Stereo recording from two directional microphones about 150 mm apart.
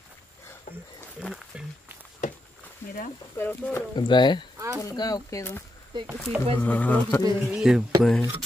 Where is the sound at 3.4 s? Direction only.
15° left (ahead or behind).